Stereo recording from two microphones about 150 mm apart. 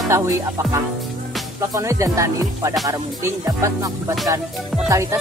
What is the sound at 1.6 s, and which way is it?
Music, 20° right (ahead or behind).